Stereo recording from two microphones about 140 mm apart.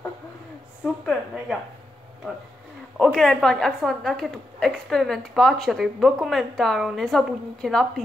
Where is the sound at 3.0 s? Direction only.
5° left (ahead or behind).